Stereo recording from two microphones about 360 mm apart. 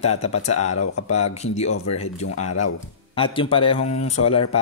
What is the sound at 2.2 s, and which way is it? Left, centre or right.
Speech, left.